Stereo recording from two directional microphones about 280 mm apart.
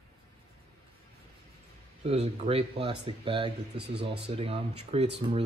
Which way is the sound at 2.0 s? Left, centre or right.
Right.